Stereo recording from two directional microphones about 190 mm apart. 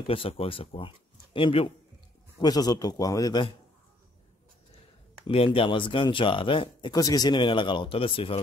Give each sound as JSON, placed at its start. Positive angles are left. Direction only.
{"t": 0.0, "sound": "speech", "side_deg": 30}
{"t": 5.2, "sound": "speech", "side_deg": 30}